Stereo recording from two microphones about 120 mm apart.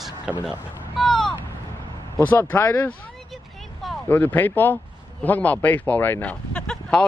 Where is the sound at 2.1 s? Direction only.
15° left (ahead or behind).